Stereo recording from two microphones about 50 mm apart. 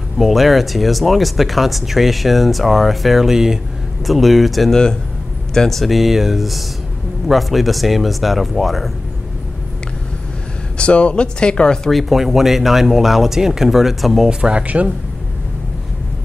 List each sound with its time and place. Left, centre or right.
0.2 s speech: centre
10.8 s speech: left
11.9 s speech: centre
14.4 s speech: right